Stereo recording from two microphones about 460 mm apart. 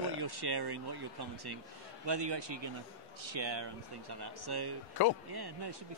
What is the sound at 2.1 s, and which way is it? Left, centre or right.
A man's voice, right.